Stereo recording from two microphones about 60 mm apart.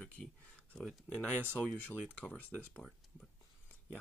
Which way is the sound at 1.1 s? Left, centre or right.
Left.